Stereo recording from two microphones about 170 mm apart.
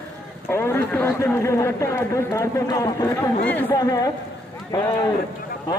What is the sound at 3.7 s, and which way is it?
Speech, 20° left (ahead or behind).